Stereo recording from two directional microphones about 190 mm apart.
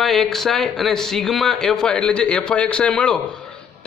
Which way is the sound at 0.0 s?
Centre (ahead or behind).